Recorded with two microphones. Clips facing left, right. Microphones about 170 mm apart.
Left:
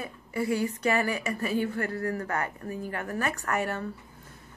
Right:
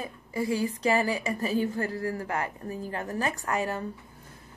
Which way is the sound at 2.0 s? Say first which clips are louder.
Left 1 dB; 10° right (ahead or behind).